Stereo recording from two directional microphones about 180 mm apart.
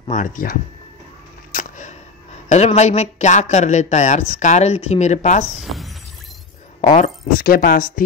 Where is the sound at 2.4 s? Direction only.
40° left (ahead or behind).